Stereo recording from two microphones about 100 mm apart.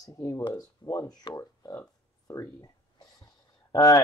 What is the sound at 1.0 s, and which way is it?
Speech, 40° left (ahead or behind).